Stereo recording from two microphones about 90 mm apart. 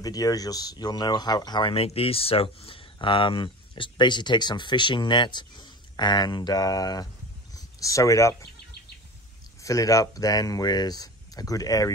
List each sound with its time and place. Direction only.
0.0 s speech: 45° left (ahead or behind)
1.7 s speech: 90° left; by 8.5 s 35° left (ahead or behind)
9.6 s speech: 40° left (ahead or behind)